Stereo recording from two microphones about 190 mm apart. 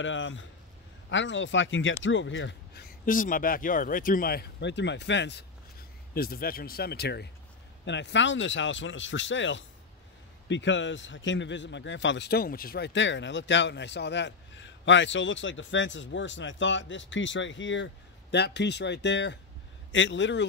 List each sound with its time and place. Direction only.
0.0 s a man's voice: 75° left (ahead or behind)
3.1 s speech: 45° left (ahead or behind); by 5.4 s 70° left (ahead or behind)
6.1 s a man's voice: 55° left (ahead or behind); by 17.8 s 75° left (ahead or behind)
18.3 s a man's voice: 65° left (ahead or behind)